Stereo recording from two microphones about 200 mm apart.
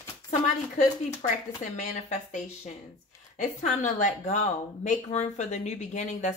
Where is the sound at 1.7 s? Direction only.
35° left (ahead or behind).